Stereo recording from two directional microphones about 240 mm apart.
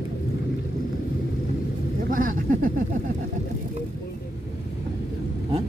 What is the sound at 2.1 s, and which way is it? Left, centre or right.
Speech, right.